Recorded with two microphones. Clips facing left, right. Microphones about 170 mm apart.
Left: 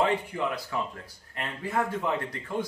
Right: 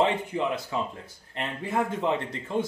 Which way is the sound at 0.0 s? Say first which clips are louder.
Right 2 dB; 20° right (ahead or behind).